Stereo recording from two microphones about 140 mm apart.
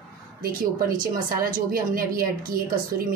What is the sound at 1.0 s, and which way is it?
A woman's voice, 90° right.